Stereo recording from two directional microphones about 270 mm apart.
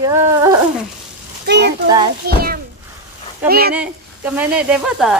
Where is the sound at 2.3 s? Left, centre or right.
Right.